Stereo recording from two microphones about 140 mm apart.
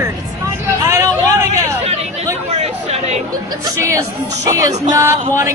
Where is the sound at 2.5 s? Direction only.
50° right (ahead or behind).